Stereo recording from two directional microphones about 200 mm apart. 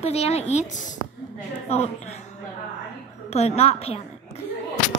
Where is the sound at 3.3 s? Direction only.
30° left (ahead or behind).